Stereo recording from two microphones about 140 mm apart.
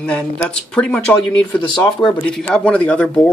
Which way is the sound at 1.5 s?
30° left (ahead or behind).